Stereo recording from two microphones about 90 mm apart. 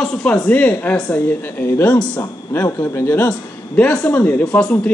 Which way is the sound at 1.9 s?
10° left (ahead or behind).